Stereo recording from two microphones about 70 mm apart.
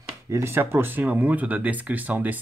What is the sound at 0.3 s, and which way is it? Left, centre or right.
Speech, right.